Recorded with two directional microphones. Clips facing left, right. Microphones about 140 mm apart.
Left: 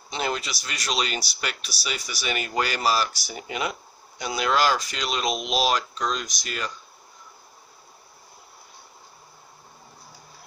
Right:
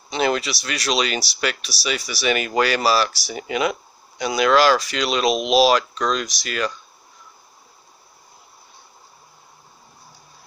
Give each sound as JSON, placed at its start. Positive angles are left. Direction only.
{"t": 0.1, "sound": "speech", "side_deg": -85}